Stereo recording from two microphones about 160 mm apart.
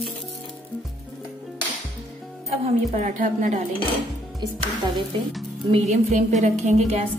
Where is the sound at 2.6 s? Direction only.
50° right (ahead or behind).